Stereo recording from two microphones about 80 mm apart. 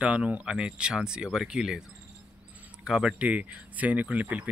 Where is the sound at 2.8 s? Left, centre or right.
Centre.